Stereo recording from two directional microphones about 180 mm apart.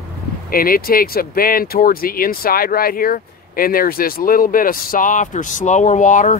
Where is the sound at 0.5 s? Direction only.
55° left (ahead or behind).